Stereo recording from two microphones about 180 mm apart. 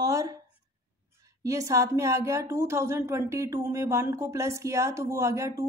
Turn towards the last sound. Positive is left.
turn(degrees=-15)  # may be behind; listen again after turning